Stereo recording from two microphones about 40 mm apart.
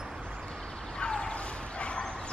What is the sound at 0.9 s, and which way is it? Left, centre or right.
Bow-wow, left.